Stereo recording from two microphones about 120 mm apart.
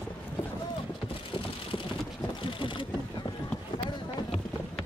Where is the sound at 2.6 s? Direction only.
45° left (ahead or behind).